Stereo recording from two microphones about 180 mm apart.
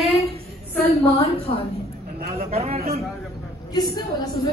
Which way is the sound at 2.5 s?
35° right (ahead or behind).